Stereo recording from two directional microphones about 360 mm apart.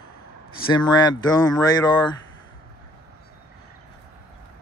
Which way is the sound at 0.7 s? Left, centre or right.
Centre.